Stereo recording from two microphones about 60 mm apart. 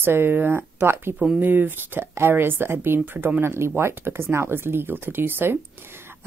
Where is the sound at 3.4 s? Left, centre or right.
Right.